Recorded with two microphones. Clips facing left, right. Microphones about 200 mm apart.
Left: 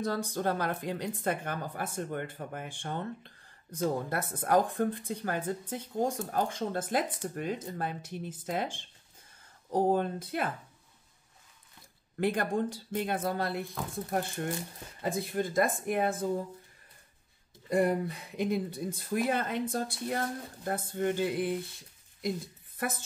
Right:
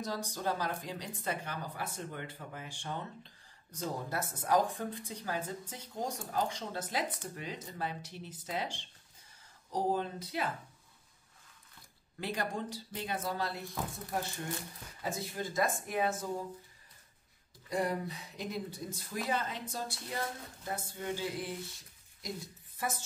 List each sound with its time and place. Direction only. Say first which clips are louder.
0.0 s a woman's voice: left 5 dB; 55° left (ahead or behind)
12.2 s a woman's voice: left 8 dB; 55° left (ahead or behind)
17.6 s speech: left 7 dB; 55° left (ahead or behind)
22.8 s a woman's voice: left 3 dB; 55° left (ahead or behind)